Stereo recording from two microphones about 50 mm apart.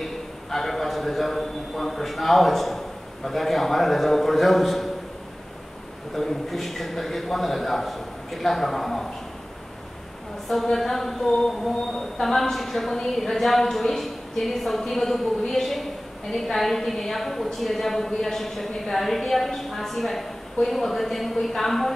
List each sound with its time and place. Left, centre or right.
0.0 s a woman's voice: centre
6.1 s a woman's voice: centre
10.5 s a woman's voice: centre